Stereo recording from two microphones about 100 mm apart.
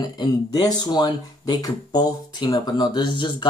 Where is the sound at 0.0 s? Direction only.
45° left (ahead or behind).